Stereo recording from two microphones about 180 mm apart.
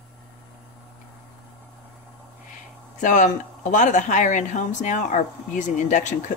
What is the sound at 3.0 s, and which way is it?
Speech, 45° left (ahead or behind).